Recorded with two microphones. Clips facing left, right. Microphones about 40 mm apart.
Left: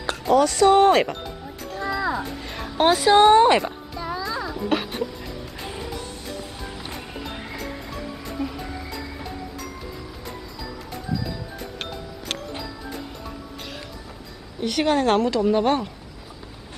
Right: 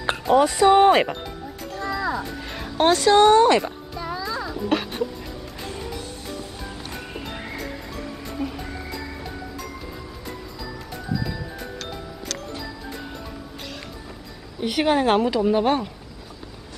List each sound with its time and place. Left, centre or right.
0.3 s speech: right
1.8 s music: centre
2.9 s speech: centre
3.9 s music: centre
7.2 s music: centre
14.6 s speech: centre